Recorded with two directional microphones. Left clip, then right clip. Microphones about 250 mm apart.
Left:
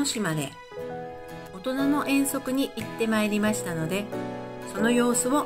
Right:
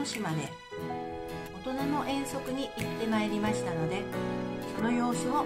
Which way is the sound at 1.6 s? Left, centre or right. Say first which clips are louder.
Left 7 dB; centre.